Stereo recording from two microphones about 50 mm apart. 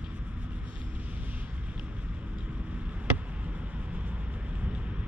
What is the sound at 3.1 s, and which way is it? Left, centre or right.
Vehicle, right.